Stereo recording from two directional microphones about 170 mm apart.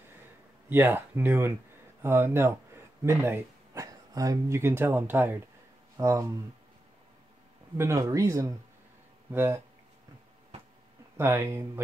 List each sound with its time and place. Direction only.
0.7 s speech: 10° right (ahead or behind)
7.7 s speech: 15° right (ahead or behind)
11.1 s speech: 15° right (ahead or behind)